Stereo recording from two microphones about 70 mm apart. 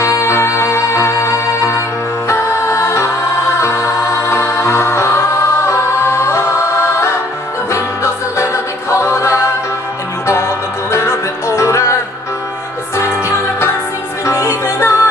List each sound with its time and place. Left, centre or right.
0.0 s music: left
8.9 s a capella: left
10.2 s music: left
14.2 s music: left